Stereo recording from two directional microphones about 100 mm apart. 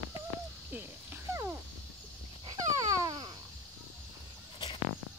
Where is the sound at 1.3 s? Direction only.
30° right (ahead or behind).